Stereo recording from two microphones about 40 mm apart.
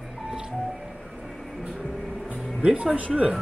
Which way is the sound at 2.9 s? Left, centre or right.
Right.